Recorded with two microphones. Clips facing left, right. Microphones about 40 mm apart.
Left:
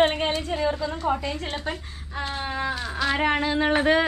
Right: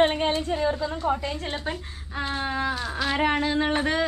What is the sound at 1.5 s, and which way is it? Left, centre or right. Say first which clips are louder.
A woman's voice: even; centre.